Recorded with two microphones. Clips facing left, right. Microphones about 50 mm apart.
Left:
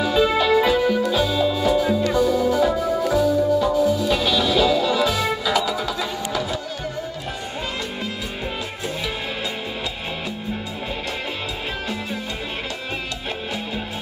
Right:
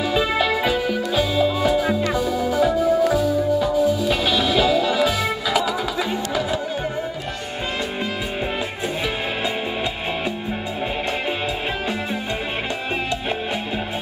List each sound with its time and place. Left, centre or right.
0.0 s music: centre
1.9 s music: right
2.1 s music: centre